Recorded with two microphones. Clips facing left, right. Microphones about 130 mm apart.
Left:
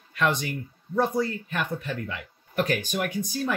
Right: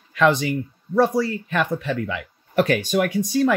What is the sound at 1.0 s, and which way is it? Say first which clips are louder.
Speech: right 6 dB; 90° right.